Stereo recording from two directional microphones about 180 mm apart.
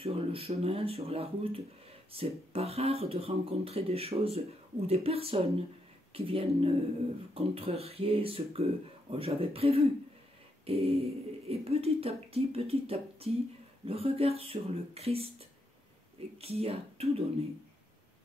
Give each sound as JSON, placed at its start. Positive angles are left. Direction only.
{"t": 0.0, "sound": "speech", "side_deg": -30}
{"t": 16.3, "sound": "speech", "side_deg": -35}